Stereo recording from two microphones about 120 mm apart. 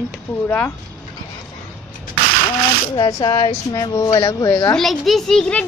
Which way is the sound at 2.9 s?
35° left (ahead or behind).